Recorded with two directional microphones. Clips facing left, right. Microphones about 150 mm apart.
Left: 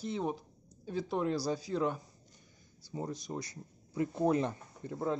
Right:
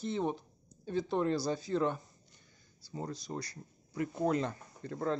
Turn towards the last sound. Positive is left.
turn(degrees=15)  # may be behind; listen again after turning